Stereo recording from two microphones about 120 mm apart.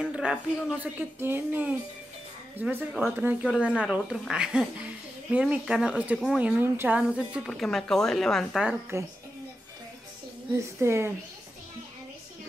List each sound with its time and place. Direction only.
0.0 s a woman's voice: 10° right (ahead or behind)
6.4 s a woman's voice: 15° right (ahead or behind); by 8.6 s 5° left (ahead or behind)
8.9 s a woman's voice: 20° right (ahead or behind)
10.5 s a woman's voice: 20° right (ahead or behind)